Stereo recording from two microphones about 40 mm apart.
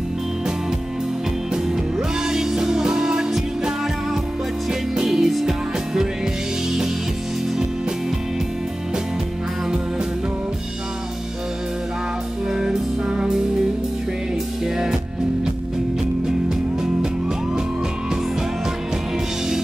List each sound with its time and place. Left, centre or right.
1.5 s music: centre
4.9 s music: centre
12.5 s music: centre
16.3 s music: centre